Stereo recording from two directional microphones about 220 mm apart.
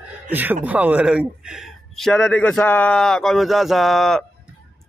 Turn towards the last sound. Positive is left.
turn(degrees=0)  # may be behind; listen again after turning